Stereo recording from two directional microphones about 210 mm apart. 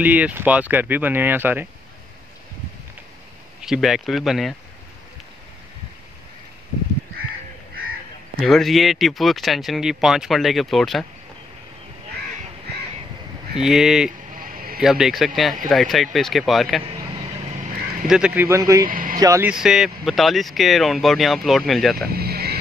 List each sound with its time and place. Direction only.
0.0 s speech: 5° right (ahead or behind)
3.6 s speech: centre (ahead or behind)
8.4 s speech: centre (ahead or behind)
13.6 s speech: centre (ahead or behind)
14.3 s a sound: 40° right (ahead or behind)
14.8 s speech: centre (ahead or behind)
17.2 s duck: 35° right (ahead or behind)
18.0 s speech: 5° right (ahead or behind)
18.9 s speech: 40° right (ahead or behind)
19.1 s speech: 15° right (ahead or behind)
19.5 s speech: centre (ahead or behind)
22.1 s vehicle: 45° right (ahead or behind)